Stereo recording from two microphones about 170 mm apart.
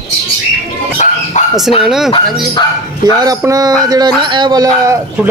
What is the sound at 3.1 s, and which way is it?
A man's voice, 20° right (ahead or behind).